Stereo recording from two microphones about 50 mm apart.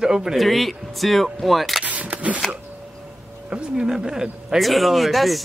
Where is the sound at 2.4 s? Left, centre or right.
Centre.